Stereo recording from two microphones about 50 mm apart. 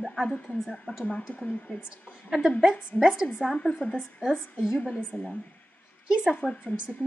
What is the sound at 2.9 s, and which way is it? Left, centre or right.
Speech, centre.